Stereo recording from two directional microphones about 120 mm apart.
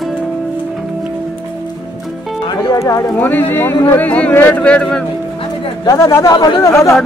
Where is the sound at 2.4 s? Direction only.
30° left (ahead or behind).